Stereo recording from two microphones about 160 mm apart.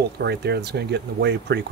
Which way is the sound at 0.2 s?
90° right.